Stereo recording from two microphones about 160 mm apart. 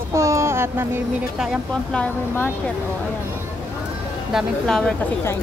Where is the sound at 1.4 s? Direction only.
Centre (ahead or behind).